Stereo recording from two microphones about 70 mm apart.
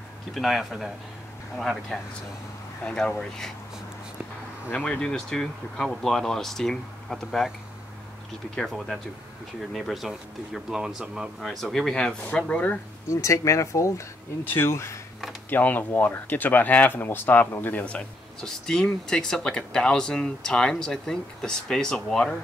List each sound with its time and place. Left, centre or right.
0.3 s speech: centre
4.7 s speech: centre
8.5 s speech: centre
11.4 s speech: centre
13.1 s speech: left
14.5 s speech: left
15.5 s speech: left
17.8 s speech: centre